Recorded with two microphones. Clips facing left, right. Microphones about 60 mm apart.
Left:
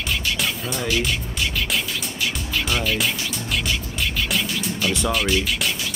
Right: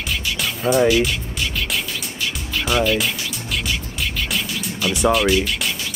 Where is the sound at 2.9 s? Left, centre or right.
Centre.